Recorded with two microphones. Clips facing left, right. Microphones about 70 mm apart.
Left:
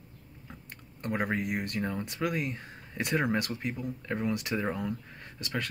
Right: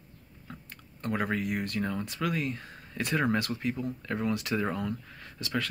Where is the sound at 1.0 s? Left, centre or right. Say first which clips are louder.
Even; centre.